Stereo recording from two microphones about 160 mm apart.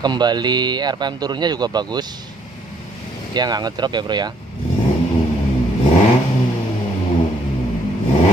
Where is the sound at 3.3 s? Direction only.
25° right (ahead or behind).